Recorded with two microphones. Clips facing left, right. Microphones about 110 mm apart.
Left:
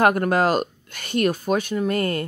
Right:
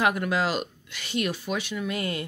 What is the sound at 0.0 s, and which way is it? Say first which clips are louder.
Speech: left 6 dB; 50° left (ahead or behind).